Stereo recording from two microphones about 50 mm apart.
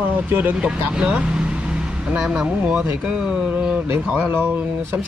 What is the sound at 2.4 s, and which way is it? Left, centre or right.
Speech, right.